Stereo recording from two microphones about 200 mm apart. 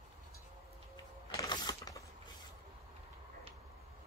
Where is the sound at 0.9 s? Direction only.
20° left (ahead or behind).